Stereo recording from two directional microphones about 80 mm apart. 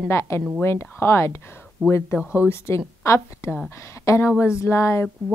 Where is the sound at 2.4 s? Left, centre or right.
Left.